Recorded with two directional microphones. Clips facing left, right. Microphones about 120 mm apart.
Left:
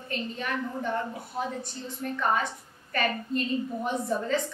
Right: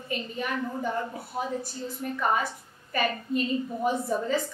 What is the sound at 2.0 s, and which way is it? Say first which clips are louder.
A woman's voice: even; 5° right (ahead or behind).